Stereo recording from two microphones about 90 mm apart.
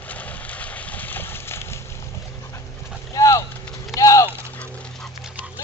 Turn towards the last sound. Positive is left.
turn(degrees=-10)  # may be behind; listen again after turning